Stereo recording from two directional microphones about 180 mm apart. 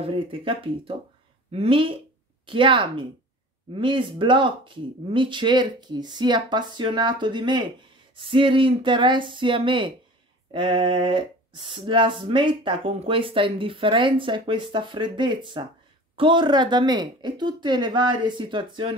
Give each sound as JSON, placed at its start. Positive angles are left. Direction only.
{"t": 0.0, "sound": "speech", "side_deg": -30}